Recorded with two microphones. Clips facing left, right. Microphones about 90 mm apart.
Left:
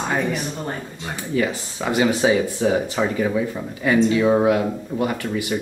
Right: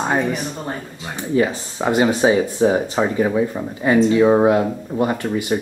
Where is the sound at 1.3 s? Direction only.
30° right (ahead or behind).